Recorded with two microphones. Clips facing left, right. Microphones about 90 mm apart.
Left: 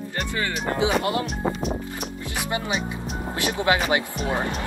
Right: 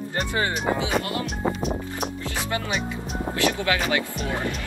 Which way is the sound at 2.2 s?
20° left (ahead or behind).